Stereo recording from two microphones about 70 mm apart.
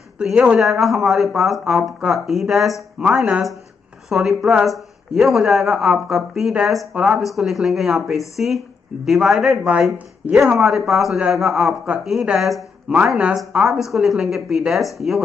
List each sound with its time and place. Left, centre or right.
0.2 s speech: centre
0.6 s speech: centre
3.0 s speech: centre
4.1 s speech: centre
7.0 s speech: centre
12.9 s speech: centre